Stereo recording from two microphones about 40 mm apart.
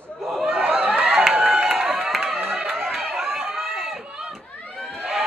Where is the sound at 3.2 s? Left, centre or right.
Right.